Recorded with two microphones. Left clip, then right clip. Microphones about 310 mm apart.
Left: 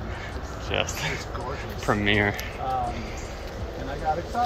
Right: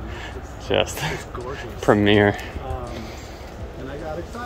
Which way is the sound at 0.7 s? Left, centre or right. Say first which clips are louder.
Right 6 dB; right.